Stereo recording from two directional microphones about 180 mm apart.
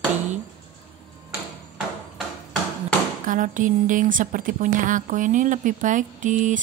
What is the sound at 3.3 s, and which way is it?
A woman's voice, 45° right (ahead or behind).